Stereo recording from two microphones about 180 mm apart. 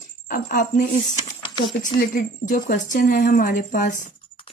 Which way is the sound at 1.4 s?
25° left (ahead or behind).